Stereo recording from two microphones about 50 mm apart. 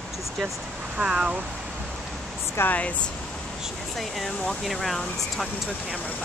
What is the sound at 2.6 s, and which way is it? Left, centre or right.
Speech, left.